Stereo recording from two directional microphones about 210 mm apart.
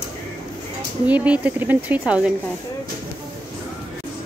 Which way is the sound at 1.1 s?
5° right (ahead or behind).